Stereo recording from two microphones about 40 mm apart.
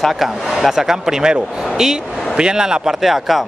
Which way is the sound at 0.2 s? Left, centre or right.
Centre.